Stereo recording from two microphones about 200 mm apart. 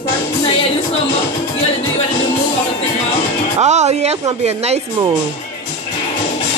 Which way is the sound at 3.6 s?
35° right (ahead or behind).